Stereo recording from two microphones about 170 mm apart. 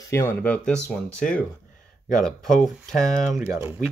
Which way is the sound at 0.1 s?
15° left (ahead or behind).